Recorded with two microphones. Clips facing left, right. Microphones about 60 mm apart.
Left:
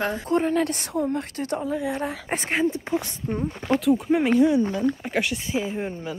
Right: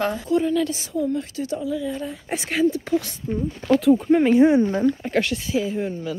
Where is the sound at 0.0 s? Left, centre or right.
Left.